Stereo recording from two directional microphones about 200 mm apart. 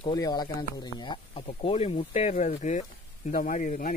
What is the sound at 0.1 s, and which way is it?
Speech, 20° left (ahead or behind).